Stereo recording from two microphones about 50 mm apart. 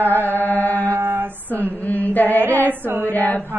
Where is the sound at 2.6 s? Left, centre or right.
Right.